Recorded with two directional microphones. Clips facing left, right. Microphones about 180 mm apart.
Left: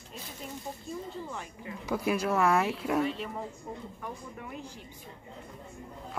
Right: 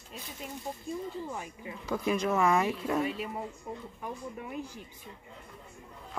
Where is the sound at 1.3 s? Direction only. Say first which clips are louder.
Right 1 dB; 20° right (ahead or behind).